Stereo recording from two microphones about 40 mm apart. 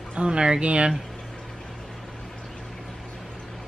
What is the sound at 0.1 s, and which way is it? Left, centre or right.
Speech, right.